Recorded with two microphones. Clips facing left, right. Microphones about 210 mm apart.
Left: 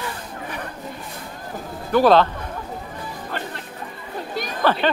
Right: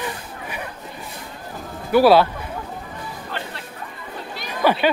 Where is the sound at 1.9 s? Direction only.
10° right (ahead or behind).